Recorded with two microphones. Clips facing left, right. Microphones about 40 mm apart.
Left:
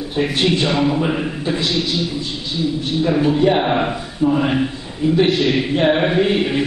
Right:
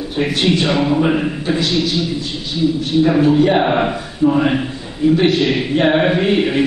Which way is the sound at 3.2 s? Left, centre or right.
Centre.